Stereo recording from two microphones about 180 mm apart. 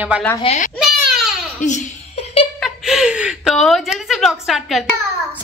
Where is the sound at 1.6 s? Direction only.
40° left (ahead or behind).